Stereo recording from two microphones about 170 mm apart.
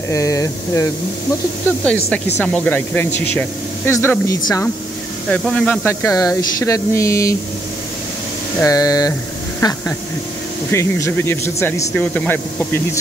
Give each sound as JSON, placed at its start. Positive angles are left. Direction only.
{"t": 0.1, "sound": "speech", "side_deg": 20}
{"t": 2.0, "sound": "speech", "side_deg": 10}
{"t": 5.3, "sound": "speech", "side_deg": 5}
{"t": 8.6, "sound": "speech", "side_deg": 20}